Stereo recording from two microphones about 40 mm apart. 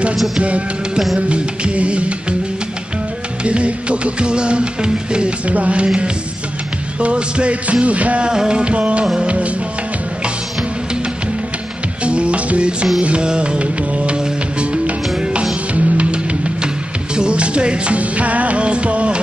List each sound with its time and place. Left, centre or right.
1.3 s music: right
3.4 s music: right
5.5 s music: right
7.0 s music: right
8.3 s music: centre
12.0 s music: right